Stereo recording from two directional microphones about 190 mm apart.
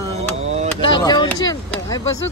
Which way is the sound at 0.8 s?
25° left (ahead or behind).